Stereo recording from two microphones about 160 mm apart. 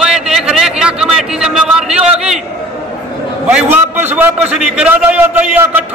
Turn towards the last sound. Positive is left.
turn(degrees=-10)  # may be behind; listen again after turning